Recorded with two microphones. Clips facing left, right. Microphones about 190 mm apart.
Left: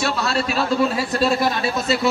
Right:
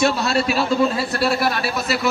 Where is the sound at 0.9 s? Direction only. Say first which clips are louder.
Left 1 dB; 20° left (ahead or behind).